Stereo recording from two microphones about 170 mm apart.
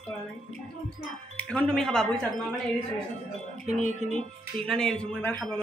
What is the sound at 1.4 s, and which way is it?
Speech, 5° left (ahead or behind).